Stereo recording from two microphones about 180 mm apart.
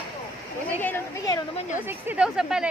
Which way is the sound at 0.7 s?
10° left (ahead or behind).